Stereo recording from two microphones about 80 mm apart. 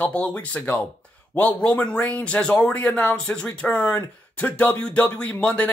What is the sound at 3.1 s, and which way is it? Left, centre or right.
Speech, centre.